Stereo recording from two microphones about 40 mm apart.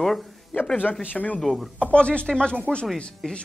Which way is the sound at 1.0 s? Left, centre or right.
Left.